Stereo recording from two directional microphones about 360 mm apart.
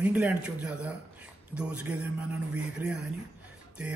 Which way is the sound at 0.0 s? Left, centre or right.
Centre.